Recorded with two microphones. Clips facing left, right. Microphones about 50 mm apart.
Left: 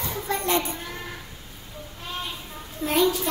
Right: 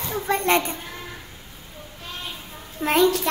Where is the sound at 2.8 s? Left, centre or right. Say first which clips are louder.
Right 3 dB; right.